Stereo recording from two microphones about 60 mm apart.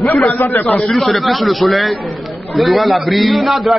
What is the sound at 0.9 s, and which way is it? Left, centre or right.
A man's voice, centre.